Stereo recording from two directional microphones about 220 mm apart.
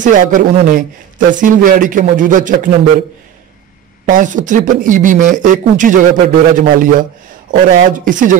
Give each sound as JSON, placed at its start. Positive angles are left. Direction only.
{"t": 0.0, "sound": "speech", "side_deg": -35}
{"t": 4.0, "sound": "a man's voice", "side_deg": -35}